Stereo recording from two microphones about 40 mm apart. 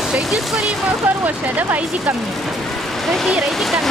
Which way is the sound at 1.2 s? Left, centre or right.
Right.